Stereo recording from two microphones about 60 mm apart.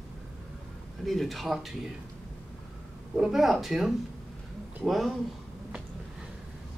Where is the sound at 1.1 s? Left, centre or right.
Centre.